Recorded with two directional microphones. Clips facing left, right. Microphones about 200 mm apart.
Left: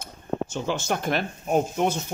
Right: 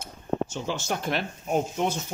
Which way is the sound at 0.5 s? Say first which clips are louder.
Left 3 dB; 55° left (ahead or behind).